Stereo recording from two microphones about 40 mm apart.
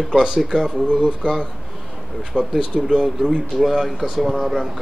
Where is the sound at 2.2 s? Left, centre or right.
Centre.